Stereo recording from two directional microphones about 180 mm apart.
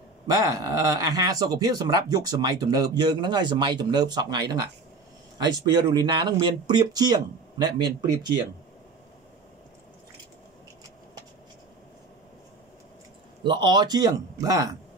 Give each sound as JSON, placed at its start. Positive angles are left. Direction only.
{"t": 0.3, "sound": "speech", "side_deg": -20}
{"t": 13.4, "sound": "speech", "side_deg": -25}